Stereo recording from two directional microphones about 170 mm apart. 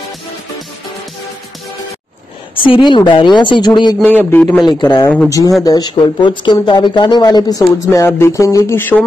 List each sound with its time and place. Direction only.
2.5 s a woman's voice: 30° left (ahead or behind)
4.0 s speech: 10° left (ahead or behind)
4.6 s speech: 25° left (ahead or behind)